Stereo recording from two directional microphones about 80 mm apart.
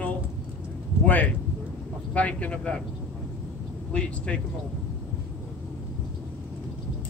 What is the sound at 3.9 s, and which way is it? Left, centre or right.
Speech, centre.